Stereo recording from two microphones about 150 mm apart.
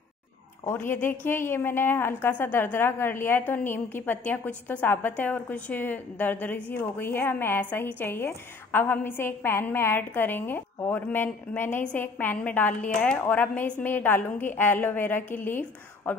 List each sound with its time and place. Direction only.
0.7 s a woman's voice: 15° left (ahead or behind)